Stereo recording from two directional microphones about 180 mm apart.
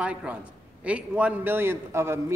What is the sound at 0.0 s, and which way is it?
A man's voice, 5° right (ahead or behind).